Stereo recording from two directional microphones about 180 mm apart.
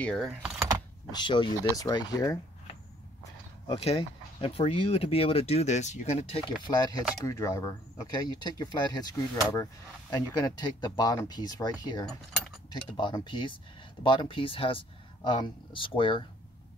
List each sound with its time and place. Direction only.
0.0 s speech: centre (ahead or behind)
1.1 s speech: 25° left (ahead or behind)
3.6 s speech: 30° left (ahead or behind)
12.1 s mechanisms: centre (ahead or behind)
12.9 s speech: 25° left (ahead or behind)